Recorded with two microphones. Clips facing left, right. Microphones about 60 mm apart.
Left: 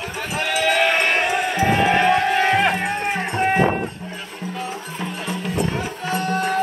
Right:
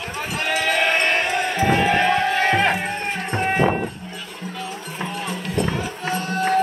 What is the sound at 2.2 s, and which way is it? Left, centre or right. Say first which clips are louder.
Music: left 1 dB; centre.